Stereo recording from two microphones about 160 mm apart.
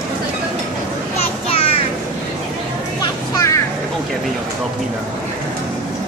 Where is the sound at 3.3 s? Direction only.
20° left (ahead or behind).